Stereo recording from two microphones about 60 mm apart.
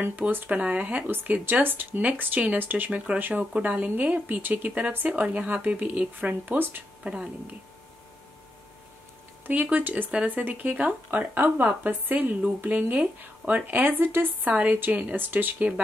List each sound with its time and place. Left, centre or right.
0.0 s a woman's voice: right
7.0 s speech: centre
9.5 s a woman's voice: right